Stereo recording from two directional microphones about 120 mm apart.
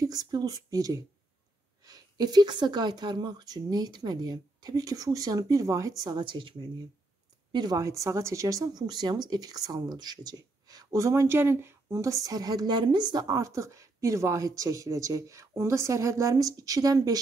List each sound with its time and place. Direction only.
0.0 s speech: 30° right (ahead or behind)
7.5 s speech: 30° right (ahead or behind)